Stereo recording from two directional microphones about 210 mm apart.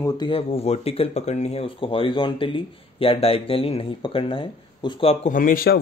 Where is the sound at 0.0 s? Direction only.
25° left (ahead or behind).